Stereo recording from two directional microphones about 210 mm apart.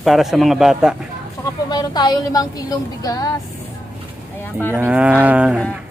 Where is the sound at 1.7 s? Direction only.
20° left (ahead or behind).